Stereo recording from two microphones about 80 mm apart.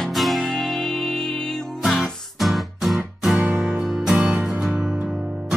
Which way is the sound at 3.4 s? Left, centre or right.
Right.